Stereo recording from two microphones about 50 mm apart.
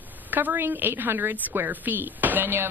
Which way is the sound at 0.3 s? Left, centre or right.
Right.